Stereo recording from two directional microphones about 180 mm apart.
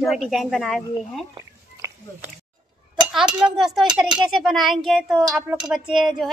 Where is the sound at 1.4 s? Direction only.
15° right (ahead or behind).